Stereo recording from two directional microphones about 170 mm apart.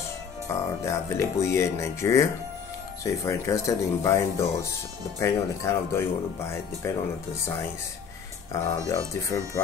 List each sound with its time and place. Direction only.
0.5 s speech: 15° left (ahead or behind)
8.8 s speech: 20° left (ahead or behind)